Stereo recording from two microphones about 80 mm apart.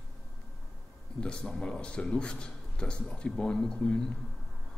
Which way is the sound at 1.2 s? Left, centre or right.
Centre.